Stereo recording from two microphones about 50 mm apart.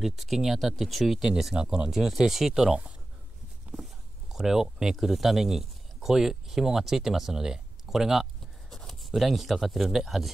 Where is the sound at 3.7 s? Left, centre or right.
Centre.